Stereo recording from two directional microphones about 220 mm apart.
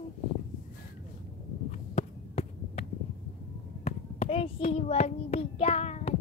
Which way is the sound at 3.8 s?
25° left (ahead or behind).